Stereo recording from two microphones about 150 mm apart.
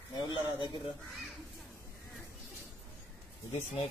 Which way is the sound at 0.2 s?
30° left (ahead or behind).